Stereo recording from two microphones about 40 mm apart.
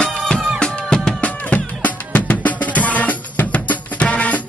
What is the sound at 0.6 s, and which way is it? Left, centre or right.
Music, left.